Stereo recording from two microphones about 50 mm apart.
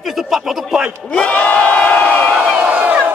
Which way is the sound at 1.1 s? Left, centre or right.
Left.